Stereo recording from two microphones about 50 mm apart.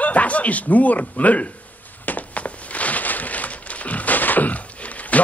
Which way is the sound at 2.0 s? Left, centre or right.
Left.